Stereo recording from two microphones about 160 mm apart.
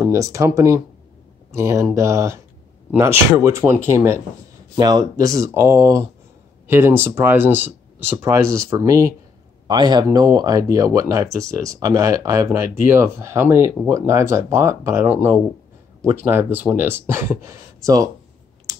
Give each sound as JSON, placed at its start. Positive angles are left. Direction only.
{"t": 0.0, "sound": "speech", "side_deg": -20}